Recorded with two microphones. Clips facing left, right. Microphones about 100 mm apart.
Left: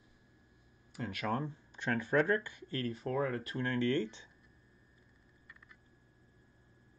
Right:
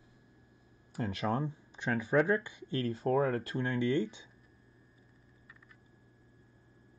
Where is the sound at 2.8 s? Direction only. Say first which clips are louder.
Right 5 dB; 30° right (ahead or behind).